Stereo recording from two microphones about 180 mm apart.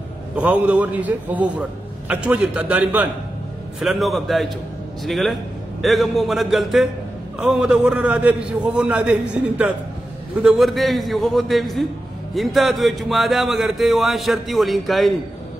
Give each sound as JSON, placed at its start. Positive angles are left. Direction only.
{"t": 0.4, "sound": "a man's voice", "side_deg": -10}